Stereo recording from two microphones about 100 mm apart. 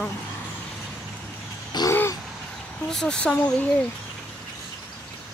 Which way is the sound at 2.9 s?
5° left (ahead or behind).